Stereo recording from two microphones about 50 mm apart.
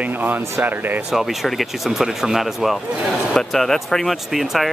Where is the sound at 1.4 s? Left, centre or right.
Centre.